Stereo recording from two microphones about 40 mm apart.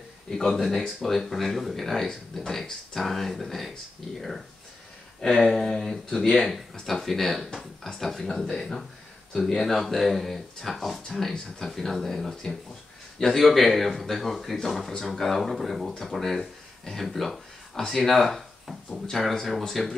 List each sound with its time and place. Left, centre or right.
0.3 s speech: centre
5.2 s speech: centre